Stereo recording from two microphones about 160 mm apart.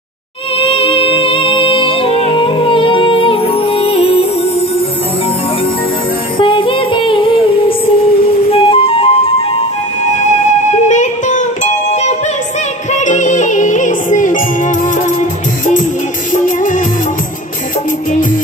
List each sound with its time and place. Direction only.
0.6 s music: 35° left (ahead or behind)
6.3 s music: 30° left (ahead or behind)
10.2 s music: 50° left (ahead or behind)
16.3 s music: 55° left (ahead or behind)